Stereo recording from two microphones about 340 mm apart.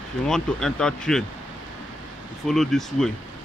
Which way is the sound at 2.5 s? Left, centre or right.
Centre.